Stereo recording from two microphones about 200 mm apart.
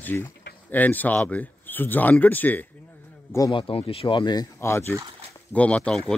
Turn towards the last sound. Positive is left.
turn(degrees=5)  # may be behind; listen again after turning